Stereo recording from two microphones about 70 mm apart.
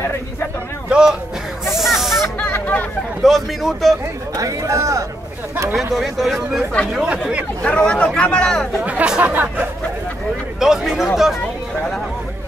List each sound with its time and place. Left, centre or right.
0.8 s speech: centre
1.7 s snake: centre
2.4 s hubbub: left
3.2 s speech: centre
4.4 s speech: right
5.9 s speech: centre
7.1 s speech: centre
7.6 s speech: centre
8.8 s speech: centre
10.6 s speech: centre